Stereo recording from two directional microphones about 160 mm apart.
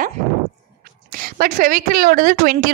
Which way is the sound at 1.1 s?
65° right (ahead or behind).